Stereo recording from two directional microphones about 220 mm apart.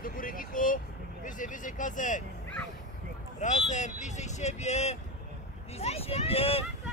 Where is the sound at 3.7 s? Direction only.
35° left (ahead or behind).